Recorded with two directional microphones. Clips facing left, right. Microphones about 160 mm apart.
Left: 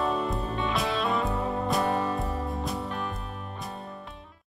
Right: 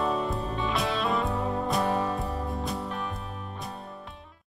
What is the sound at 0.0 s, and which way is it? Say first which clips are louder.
Music: even; centre (ahead or behind).